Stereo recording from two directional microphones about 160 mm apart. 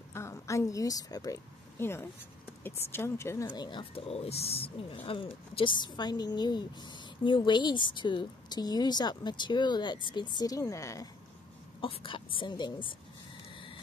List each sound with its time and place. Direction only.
0.1 s a woman's voice: 20° left (ahead or behind)
11.8 s a woman's voice: 35° left (ahead or behind)